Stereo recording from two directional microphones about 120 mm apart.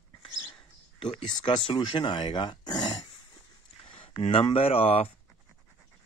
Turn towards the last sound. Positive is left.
turn(degrees=55)  # may be behind; listen again after turning